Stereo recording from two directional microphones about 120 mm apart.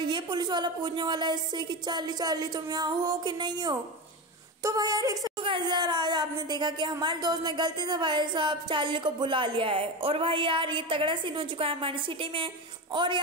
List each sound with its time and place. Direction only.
0.0 s a woman's voice: 35° right (ahead or behind)
5.4 s a woman's voice: 40° right (ahead or behind)